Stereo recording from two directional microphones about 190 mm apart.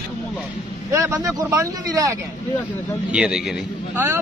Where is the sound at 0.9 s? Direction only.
15° right (ahead or behind).